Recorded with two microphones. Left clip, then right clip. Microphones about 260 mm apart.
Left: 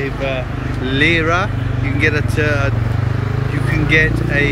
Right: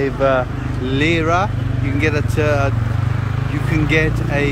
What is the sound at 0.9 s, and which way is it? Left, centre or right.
Speech, centre.